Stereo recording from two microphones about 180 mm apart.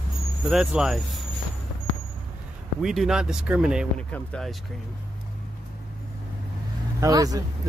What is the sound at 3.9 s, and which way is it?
Speech, 5° left (ahead or behind).